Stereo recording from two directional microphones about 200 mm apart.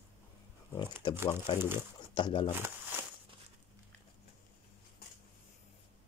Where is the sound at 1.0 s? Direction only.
20° left (ahead or behind).